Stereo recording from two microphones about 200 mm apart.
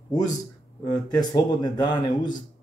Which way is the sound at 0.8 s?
20° left (ahead or behind).